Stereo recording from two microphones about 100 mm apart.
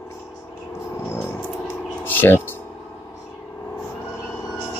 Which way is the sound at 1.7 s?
20° left (ahead or behind).